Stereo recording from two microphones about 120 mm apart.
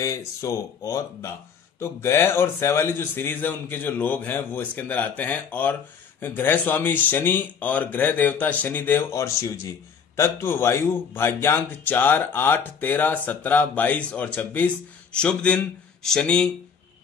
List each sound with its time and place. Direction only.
0.0 s speech: 25° left (ahead or behind); by 16.4 s 5° left (ahead or behind)